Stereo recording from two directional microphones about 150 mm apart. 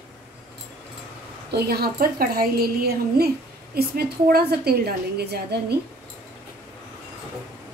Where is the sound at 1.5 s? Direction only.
90° right.